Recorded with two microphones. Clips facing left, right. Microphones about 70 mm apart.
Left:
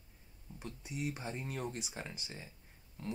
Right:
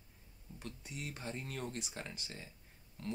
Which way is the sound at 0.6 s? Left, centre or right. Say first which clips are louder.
Left 5 dB; centre.